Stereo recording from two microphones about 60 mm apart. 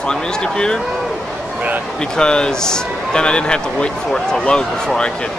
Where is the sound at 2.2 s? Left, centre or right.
Centre.